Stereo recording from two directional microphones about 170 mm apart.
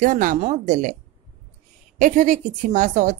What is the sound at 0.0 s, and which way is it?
Speech, 50° right (ahead or behind).